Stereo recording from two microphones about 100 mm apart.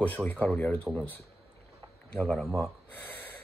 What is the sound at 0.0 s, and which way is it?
Speech, 15° left (ahead or behind).